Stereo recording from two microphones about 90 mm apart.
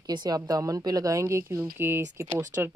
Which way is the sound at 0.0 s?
50° right (ahead or behind).